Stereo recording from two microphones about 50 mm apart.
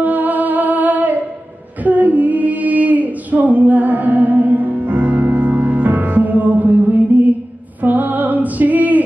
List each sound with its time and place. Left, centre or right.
0.0 s music: right
1.9 s female singing: right
7.8 s music: right